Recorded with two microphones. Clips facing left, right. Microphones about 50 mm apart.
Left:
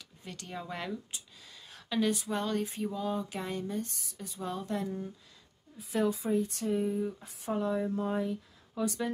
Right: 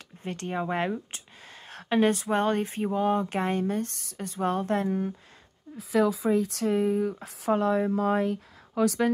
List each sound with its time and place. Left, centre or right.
0.2 s speech: right
6.3 s speech: right